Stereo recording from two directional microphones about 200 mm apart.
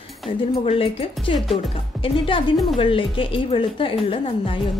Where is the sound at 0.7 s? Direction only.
30° left (ahead or behind).